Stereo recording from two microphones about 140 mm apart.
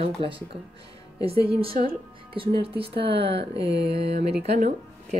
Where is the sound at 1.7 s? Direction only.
90° right.